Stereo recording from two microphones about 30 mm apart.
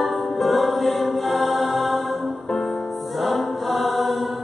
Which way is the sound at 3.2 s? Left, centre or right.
Centre.